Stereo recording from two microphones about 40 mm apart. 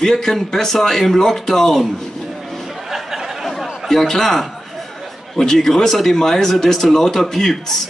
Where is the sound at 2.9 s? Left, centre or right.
Centre.